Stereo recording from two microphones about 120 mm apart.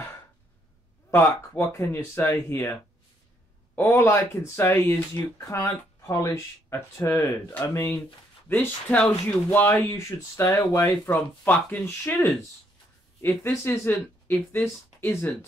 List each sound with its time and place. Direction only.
1.1 s speech: 20° left (ahead or behind)
3.7 s speech: 20° left (ahead or behind)